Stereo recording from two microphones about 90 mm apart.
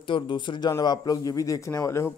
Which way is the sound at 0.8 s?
50° left (ahead or behind).